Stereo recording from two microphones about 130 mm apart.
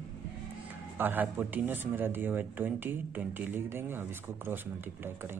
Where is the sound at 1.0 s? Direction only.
15° right (ahead or behind).